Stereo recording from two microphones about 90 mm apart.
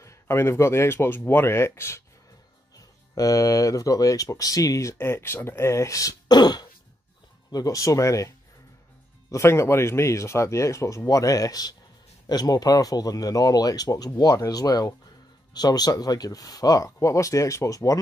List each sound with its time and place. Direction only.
0.0 s speech: 30° left (ahead or behind)
2.7 s speech: 40° left (ahead or behind)
4.9 s speech: 25° left (ahead or behind); by 6.7 s 50° left (ahead or behind)
7.5 s speech: 40° left (ahead or behind)
9.3 s speech: 30° left (ahead or behind)